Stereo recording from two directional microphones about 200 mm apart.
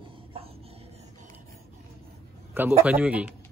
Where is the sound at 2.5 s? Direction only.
10° right (ahead or behind).